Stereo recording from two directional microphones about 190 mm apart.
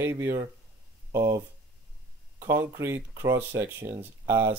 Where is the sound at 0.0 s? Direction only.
15° right (ahead or behind).